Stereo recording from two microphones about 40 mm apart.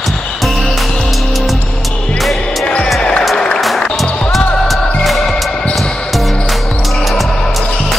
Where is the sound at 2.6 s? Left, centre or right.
Left.